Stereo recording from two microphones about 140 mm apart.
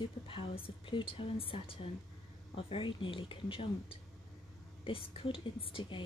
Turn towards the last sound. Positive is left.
turn(degrees=35)  # may be behind; listen again after turning